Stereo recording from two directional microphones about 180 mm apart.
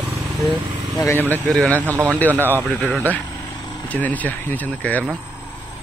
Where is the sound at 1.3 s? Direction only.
5° left (ahead or behind).